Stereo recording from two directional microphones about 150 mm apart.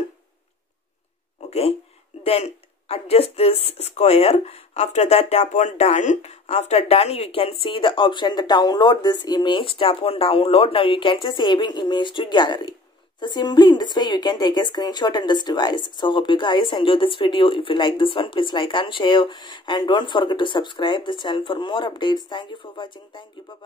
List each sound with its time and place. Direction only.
1.5 s a woman's voice: 40° left (ahead or behind)